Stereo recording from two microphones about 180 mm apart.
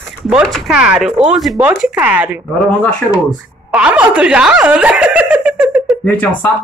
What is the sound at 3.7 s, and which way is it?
Speech, 5° right (ahead or behind).